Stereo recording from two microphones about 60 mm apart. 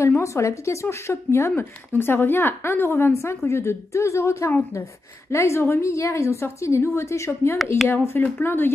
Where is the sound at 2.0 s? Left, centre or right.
Left.